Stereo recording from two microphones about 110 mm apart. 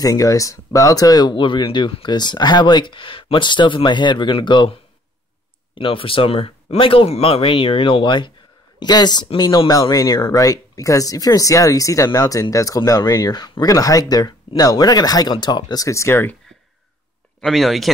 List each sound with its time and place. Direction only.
0.0 s speech: 35° left (ahead or behind); by 4.7 s 50° left (ahead or behind)
5.8 s speech: 55° left (ahead or behind); by 16.3 s 20° left (ahead or behind)
17.4 s speech: centre (ahead or behind)